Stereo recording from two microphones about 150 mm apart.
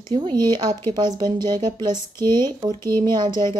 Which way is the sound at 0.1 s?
35° right (ahead or behind).